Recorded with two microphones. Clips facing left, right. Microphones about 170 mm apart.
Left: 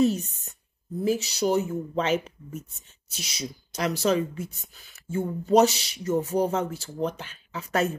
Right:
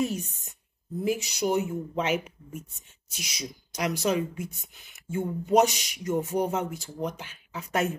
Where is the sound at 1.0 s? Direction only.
35° left (ahead or behind).